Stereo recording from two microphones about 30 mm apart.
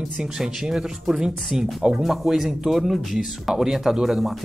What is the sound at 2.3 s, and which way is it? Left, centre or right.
A man's voice, centre.